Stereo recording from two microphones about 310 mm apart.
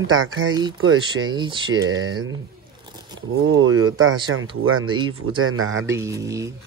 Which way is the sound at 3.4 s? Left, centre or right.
Right.